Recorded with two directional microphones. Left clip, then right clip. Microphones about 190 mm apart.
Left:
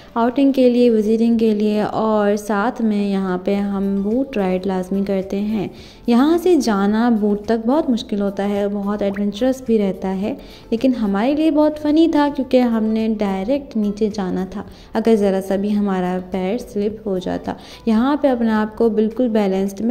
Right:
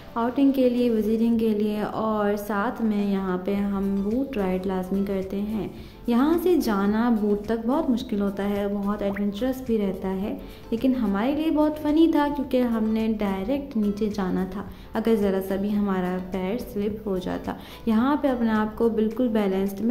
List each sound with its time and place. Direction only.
0.1 s a woman's voice: 35° left (ahead or behind)